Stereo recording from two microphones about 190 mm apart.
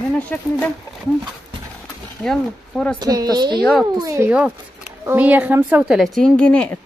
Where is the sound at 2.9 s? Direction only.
20° right (ahead or behind).